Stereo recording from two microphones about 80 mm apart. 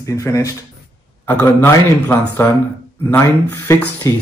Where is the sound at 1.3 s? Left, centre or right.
Left.